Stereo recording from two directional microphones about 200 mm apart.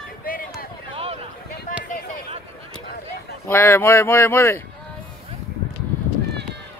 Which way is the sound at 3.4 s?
10° left (ahead or behind).